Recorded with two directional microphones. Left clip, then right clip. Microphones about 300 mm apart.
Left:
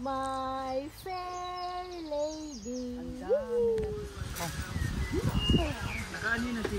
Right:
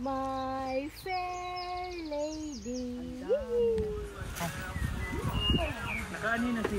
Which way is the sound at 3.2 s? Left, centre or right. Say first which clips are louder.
Even; left.